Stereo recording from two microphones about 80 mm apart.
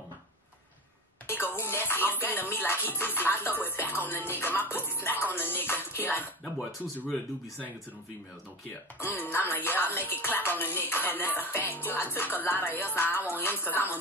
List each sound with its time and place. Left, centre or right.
1.2 s music: left
7.1 s speech: centre
8.6 s music: left
13.1 s speech: right
13.4 s music: left